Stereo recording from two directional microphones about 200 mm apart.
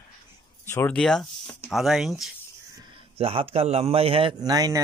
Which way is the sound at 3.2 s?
30° right (ahead or behind).